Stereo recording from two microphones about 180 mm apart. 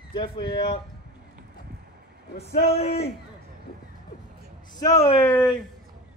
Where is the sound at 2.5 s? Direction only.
55° left (ahead or behind).